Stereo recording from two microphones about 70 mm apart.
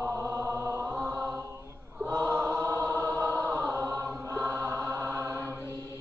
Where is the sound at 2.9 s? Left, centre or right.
Left.